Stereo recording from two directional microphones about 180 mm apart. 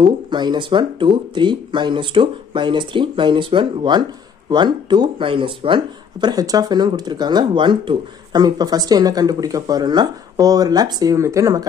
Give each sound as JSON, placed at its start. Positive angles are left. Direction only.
{"t": 0.0, "sound": "speech", "side_deg": -25}